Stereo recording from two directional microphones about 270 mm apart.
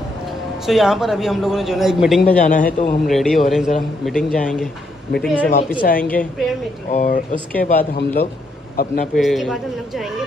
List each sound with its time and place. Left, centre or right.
0.7 s a man's voice: centre
2.4 s a man's voice: left
3.1 s a man's voice: centre
5.8 s a man's voice: left
9.1 s a man's voice: centre